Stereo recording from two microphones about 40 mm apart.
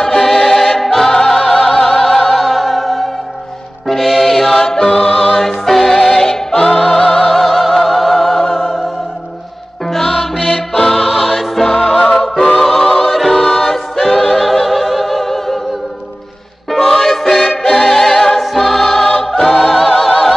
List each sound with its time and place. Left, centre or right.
0.0 s choir: centre
1.1 s music: centre
4.6 s music: centre
5.4 s music: centre
9.9 s music: centre
16.7 s music: centre